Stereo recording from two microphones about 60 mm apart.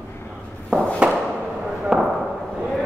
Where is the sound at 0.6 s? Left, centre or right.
Centre.